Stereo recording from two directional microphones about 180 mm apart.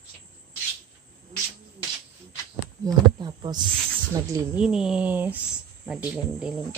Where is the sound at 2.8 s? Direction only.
25° right (ahead or behind).